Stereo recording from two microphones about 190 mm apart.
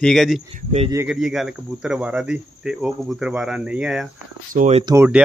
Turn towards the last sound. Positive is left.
turn(degrees=-15)  # may be behind; listen again after turning